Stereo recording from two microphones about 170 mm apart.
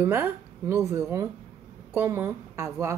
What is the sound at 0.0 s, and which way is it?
Speech, 15° right (ahead or behind).